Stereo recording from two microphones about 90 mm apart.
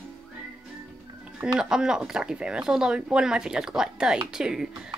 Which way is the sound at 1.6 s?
5° right (ahead or behind).